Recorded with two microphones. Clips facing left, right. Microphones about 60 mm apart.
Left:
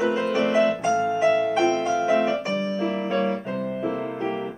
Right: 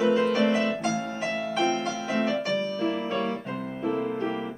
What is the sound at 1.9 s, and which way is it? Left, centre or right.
Music, left.